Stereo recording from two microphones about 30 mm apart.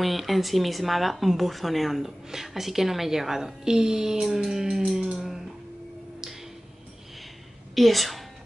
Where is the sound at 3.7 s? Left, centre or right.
Right.